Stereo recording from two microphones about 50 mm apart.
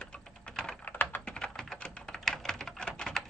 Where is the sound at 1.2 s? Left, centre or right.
Centre.